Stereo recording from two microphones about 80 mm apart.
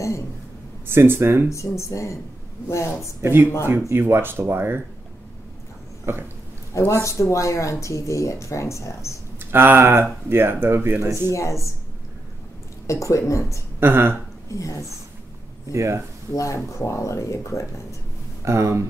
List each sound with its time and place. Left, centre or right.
0.9 s speech: right
1.5 s speech: left
3.2 s speech: right
6.1 s speech: right
6.9 s speech: left
9.4 s speech: right
11.1 s speech: left
12.8 s speech: left
13.7 s speech: right
14.5 s speech: left
15.7 s speech: right
16.3 s speech: left
18.4 s speech: right